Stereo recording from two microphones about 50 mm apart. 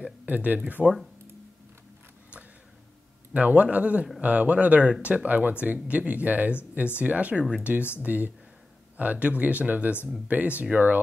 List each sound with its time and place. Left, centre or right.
0.3 s speech: right
0.8 s speech: centre
3.3 s speech: right